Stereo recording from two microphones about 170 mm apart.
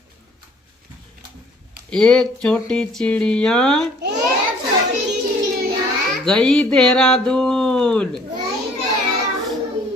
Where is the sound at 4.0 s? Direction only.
85° right.